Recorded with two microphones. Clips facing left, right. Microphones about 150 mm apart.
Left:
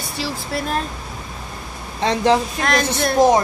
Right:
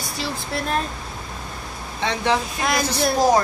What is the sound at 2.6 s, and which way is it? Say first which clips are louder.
Speech: left 3 dB; 5° right (ahead or behind).